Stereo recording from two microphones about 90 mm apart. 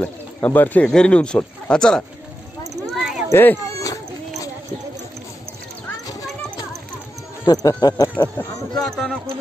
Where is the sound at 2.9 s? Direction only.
5° right (ahead or behind).